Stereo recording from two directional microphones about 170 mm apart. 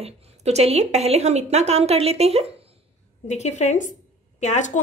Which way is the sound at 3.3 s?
45° left (ahead or behind).